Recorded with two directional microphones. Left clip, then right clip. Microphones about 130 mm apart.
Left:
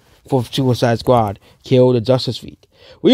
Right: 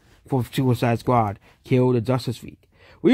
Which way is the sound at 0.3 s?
25° left (ahead or behind).